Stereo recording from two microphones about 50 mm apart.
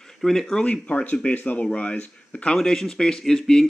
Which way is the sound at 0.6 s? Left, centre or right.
Left.